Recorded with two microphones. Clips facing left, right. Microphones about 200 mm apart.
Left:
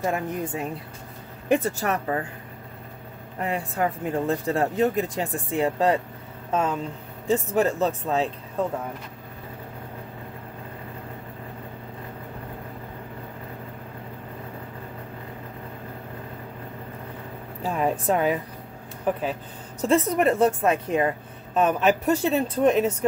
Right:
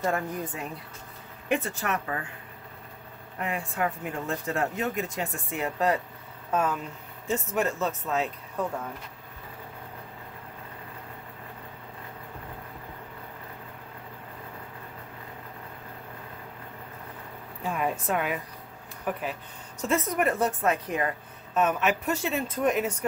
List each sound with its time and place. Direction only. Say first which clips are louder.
0.0 s a woman's voice: left 2 dB; 20° left (ahead or behind)
1.5 s speech: left 6 dB; 35° left (ahead or behind)
3.3 s a woman's voice: left 4 dB; 35° left (ahead or behind)
17.6 s a sound: left 5 dB; 30° left (ahead or behind)
19.8 s a woman's voice: left 6 dB; 30° left (ahead or behind)